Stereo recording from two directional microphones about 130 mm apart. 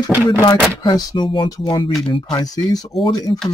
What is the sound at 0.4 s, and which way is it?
Speech, 30° left (ahead or behind).